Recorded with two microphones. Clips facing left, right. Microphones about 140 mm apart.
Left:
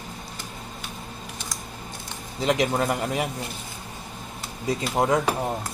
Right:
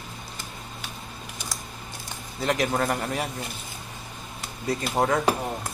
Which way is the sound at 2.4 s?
15° left (ahead or behind).